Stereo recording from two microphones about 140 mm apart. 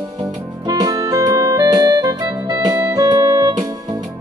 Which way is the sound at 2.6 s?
25° right (ahead or behind).